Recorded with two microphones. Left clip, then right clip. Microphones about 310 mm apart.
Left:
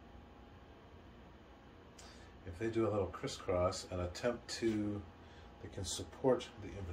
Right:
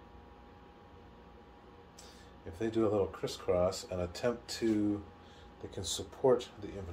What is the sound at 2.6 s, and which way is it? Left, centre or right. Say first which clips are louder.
Speech: right 5 dB; right.